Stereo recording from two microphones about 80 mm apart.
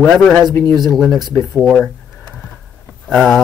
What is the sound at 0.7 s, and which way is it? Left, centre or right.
Speech, right.